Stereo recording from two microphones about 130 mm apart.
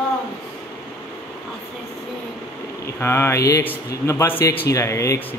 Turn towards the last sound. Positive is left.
turn(degrees=25)  # may be behind; listen again after turning